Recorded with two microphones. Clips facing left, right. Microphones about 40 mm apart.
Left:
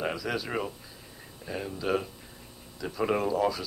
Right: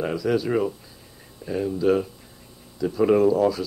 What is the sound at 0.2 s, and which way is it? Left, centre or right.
Speech, centre.